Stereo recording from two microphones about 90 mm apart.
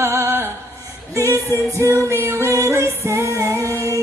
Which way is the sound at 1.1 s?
35° right (ahead or behind).